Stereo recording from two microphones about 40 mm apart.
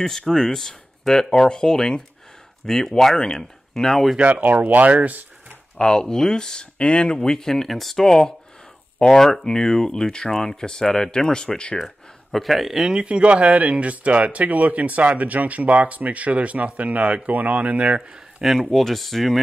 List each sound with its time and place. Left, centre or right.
0.3 s speech: centre
4.2 s speech: right
5.8 s speech: centre
7.2 s speech: centre
11.8 s speech: centre
12.8 s speech: right
17.3 s speech: right
18.4 s speech: centre